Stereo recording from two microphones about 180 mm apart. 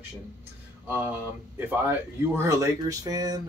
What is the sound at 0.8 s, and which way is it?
Speech, 10° right (ahead or behind).